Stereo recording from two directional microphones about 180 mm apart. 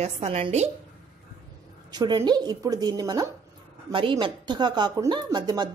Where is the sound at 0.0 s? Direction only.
35° right (ahead or behind).